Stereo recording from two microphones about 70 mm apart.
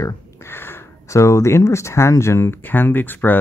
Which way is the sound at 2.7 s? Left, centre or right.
Left.